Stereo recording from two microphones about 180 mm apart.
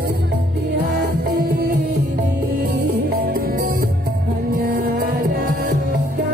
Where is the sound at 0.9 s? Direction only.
55° right (ahead or behind).